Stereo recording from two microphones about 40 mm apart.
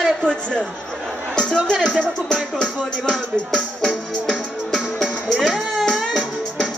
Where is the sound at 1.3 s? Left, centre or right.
Left.